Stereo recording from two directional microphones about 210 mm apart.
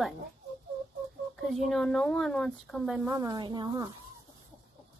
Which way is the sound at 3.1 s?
15° right (ahead or behind).